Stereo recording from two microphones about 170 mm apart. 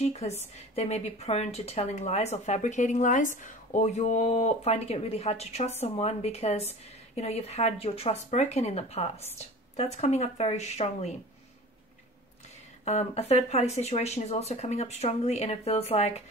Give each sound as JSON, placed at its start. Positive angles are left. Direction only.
{"t": 0.0, "sound": "a woman's voice", "side_deg": 40}
{"t": 12.8, "sound": "a woman's voice", "side_deg": 40}